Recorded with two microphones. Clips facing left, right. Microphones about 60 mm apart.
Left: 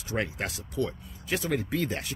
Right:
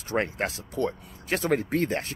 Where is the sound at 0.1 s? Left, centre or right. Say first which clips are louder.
Right 4 dB; right.